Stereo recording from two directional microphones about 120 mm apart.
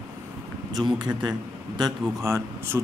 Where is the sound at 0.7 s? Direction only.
35° right (ahead or behind).